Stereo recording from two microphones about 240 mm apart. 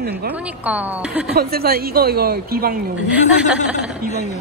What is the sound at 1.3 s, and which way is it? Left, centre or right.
A woman's voice, right.